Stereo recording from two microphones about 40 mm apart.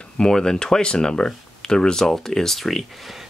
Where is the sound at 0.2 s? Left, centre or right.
Centre.